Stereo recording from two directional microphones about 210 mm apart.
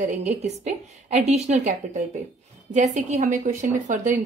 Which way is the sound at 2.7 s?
35° right (ahead or behind).